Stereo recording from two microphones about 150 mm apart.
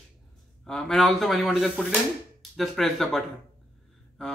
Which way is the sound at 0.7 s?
5° left (ahead or behind).